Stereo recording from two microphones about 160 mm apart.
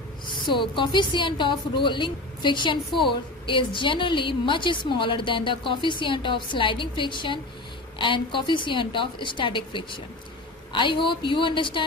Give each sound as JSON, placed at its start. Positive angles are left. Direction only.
{"t": 0.3, "sound": "a woman's voice", "side_deg": 30}